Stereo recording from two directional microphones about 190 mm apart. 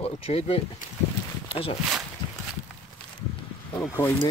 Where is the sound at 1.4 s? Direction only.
30° left (ahead or behind).